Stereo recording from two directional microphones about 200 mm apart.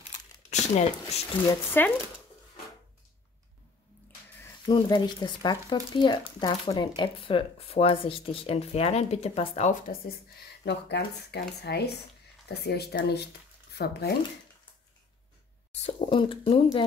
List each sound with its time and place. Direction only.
0.5 s speech: 35° left (ahead or behind)
1.5 s speech: 10° left (ahead or behind)
4.4 s speech: 20° left (ahead or behind); by 14.1 s 55° left (ahead or behind)
15.8 s speech: 30° left (ahead or behind)